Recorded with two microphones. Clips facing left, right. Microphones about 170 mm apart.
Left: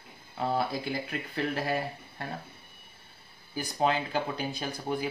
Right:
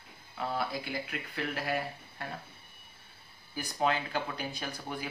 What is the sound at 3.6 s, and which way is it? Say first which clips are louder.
Speech: left 3 dB; 30° left (ahead or behind).